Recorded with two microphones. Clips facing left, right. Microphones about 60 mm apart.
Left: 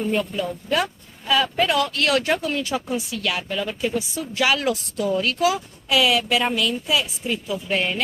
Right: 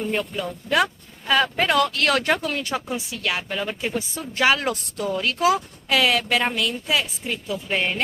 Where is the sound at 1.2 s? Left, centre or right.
Right.